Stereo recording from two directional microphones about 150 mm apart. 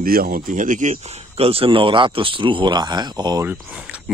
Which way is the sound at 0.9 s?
45° right (ahead or behind).